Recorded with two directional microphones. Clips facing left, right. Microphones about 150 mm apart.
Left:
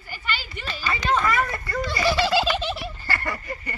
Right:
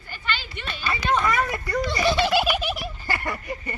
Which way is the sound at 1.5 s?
15° right (ahead or behind).